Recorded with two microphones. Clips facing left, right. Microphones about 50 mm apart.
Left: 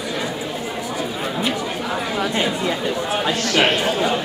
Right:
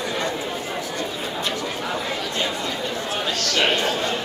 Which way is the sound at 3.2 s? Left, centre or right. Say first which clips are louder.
Left 3 dB; centre.